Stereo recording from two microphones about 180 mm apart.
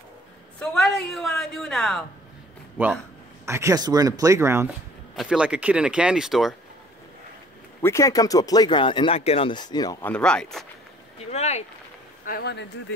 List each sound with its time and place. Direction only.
0.6 s a woman's voice: 5° left (ahead or behind)
2.8 s speech: 10° right (ahead or behind)
5.1 s a woman's voice: centre (ahead or behind)
7.8 s speech: 15° left (ahead or behind)
10.0 s a woman's voice: 5° left (ahead or behind)
11.1 s speech: 35° left (ahead or behind)
12.3 s speech: 65° left (ahead or behind)